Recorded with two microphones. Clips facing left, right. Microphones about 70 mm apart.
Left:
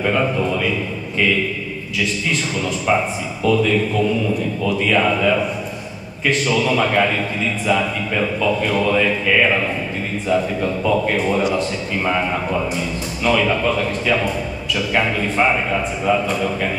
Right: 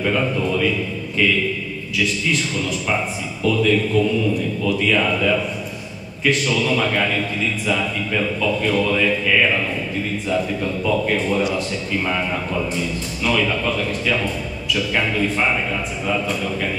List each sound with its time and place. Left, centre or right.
0.0 s a man's voice: centre
2.9 s a man's voice: centre